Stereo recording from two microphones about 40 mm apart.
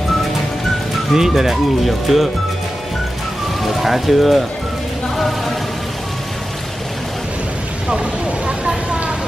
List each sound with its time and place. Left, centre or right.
1.1 s speech: centre
3.6 s speech: centre
7.9 s a sound: right